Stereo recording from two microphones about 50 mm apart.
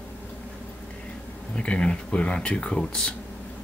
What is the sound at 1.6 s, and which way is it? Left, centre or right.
Speech, left.